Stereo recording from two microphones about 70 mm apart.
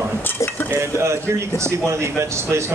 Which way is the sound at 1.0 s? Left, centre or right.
Right.